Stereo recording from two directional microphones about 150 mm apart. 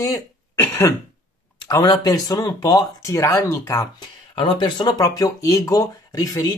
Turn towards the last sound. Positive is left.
turn(degrees=25)  # may be behind; listen again after turning